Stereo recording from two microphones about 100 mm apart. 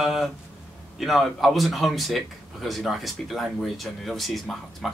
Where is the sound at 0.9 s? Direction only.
Centre (ahead or behind).